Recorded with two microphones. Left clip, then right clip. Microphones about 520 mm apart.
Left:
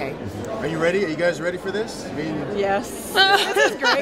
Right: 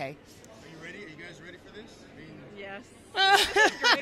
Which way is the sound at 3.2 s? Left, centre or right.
Right.